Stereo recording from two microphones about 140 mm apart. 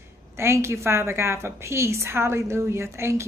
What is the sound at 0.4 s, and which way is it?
A woman's voice, 20° right (ahead or behind).